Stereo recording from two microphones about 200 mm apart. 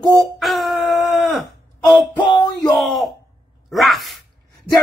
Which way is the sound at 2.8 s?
Centre (ahead or behind).